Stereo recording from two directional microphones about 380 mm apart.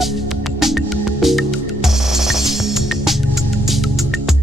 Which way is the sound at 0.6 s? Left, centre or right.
Centre.